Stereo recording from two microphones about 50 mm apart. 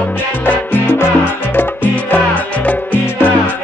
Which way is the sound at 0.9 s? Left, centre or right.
Left.